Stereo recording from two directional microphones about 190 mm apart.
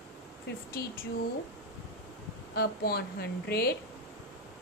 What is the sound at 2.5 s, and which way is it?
A woman's voice, 55° left (ahead or behind).